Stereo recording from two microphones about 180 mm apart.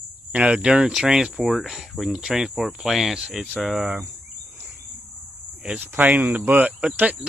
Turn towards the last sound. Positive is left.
turn(degrees=-10)  # may be behind; listen again after turning